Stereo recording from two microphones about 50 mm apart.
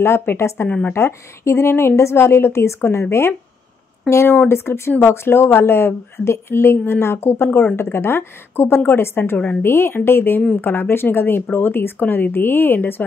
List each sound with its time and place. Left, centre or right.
0.2 s a woman's voice: left
0.9 s a woman's voice: left
4.1 s speech: left
4.5 s a woman's voice: left
7.8 s a woman's voice: left